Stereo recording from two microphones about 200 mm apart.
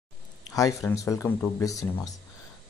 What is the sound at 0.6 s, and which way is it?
Speech, 15° left (ahead or behind).